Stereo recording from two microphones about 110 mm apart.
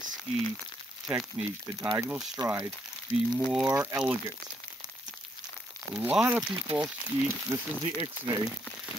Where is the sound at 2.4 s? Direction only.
40° right (ahead or behind).